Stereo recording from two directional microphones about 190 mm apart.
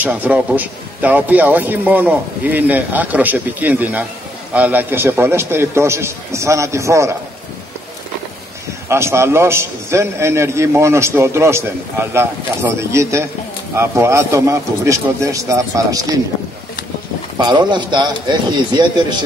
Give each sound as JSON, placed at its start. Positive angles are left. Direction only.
{"t": 0.0, "sound": "a man's voice", "side_deg": -10}
{"t": 8.8, "sound": "a man's voice", "side_deg": -15}
{"t": 17.4, "sound": "a man's voice", "side_deg": -25}